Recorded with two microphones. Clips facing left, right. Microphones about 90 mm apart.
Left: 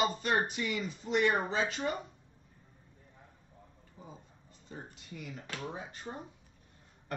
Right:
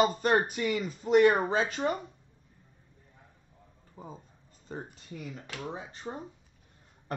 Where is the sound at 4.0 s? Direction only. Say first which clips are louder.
Right 6 dB; 45° right (ahead or behind).